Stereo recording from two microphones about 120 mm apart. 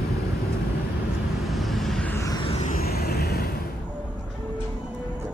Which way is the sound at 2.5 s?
75° left (ahead or behind).